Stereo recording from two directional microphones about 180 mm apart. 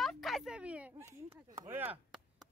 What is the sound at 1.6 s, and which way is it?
Chop, 10° right (ahead or behind).